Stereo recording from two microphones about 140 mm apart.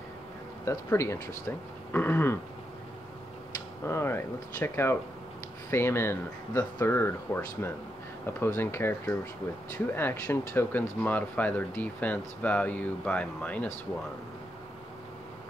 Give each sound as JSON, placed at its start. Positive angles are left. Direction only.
{"t": 0.7, "sound": "speech", "side_deg": 20}
{"t": 1.9, "sound": "throat clearing", "side_deg": 15}
{"t": 3.8, "sound": "speech", "side_deg": 15}